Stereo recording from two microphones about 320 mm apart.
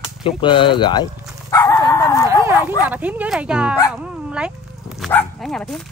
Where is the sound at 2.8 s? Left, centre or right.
Centre.